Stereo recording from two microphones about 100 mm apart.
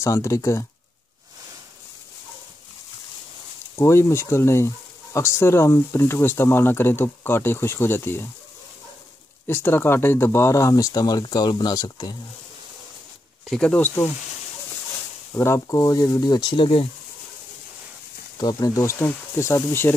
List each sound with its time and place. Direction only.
0.0 s speech: 30° left (ahead or behind)
3.7 s speech: 25° left (ahead or behind)
9.5 s speech: 20° left (ahead or behind); by 12.1 s 40° left (ahead or behind)
13.5 s speech: 10° left (ahead or behind)
15.3 s speech: 30° left (ahead or behind); by 16.8 s 60° left (ahead or behind)
18.4 s speech: 40° left (ahead or behind)